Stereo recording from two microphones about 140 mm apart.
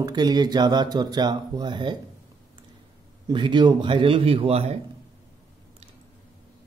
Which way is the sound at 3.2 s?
35° right (ahead or behind).